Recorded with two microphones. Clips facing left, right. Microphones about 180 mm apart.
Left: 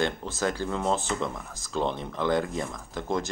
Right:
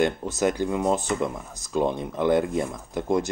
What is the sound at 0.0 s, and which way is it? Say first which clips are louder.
Speech: right 5 dB; 20° right (ahead or behind).